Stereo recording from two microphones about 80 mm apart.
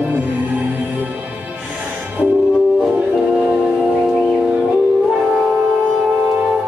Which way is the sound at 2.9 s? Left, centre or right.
Centre.